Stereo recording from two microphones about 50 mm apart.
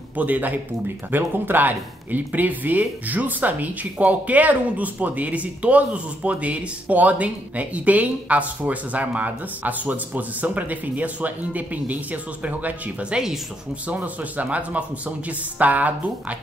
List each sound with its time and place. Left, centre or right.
0.1 s speech: right
13.1 s speech: centre
13.8 s a man's voice: right